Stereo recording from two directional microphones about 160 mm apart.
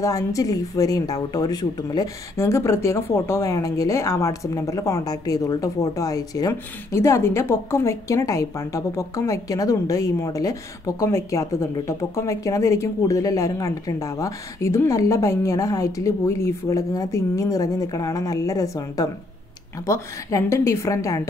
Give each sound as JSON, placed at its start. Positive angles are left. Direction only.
{"t": 0.0, "sound": "a woman's voice", "side_deg": 20}